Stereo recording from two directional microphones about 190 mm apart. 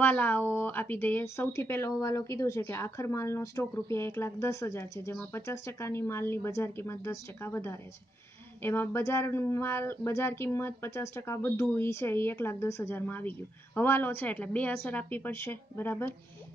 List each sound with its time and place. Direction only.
0.0 s speech: 10° left (ahead or behind)